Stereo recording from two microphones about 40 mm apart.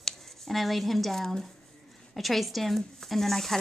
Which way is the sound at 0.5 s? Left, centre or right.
Centre.